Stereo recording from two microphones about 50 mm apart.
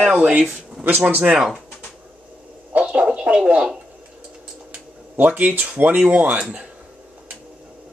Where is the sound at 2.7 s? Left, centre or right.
Right.